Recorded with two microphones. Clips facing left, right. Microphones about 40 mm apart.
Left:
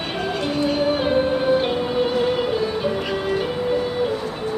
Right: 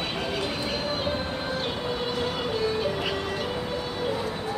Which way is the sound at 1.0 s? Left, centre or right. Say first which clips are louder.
Left 10 dB; centre.